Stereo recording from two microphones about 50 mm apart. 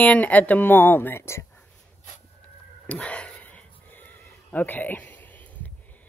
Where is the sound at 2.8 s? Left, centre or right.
Left.